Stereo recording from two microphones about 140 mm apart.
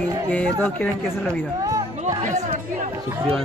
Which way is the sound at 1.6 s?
25° right (ahead or behind).